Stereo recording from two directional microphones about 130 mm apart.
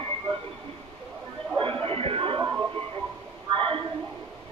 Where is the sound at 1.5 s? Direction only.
45° right (ahead or behind).